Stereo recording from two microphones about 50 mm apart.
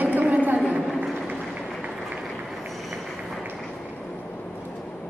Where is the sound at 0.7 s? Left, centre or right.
Right.